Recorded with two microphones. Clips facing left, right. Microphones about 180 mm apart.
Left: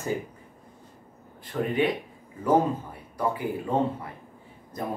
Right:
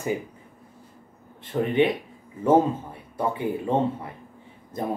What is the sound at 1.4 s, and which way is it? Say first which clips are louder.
A man's voice: right 4 dB; 25° right (ahead or behind).